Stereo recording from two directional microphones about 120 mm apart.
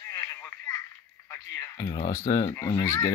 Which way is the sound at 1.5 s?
30° left (ahead or behind).